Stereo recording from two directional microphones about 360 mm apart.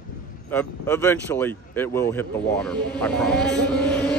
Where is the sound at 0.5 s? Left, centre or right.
Centre.